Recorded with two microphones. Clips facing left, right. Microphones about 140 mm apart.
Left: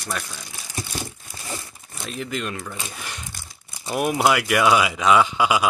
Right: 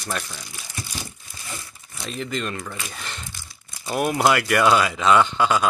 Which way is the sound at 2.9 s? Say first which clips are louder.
Even; 10° left (ahead or behind).